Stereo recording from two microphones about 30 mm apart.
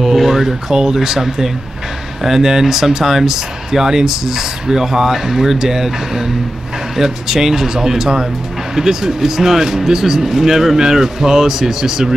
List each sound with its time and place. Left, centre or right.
0.0 s speech: centre